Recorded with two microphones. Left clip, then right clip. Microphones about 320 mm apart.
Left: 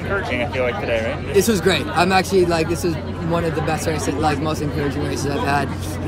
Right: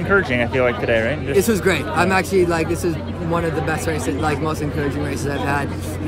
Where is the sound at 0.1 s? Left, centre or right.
Right.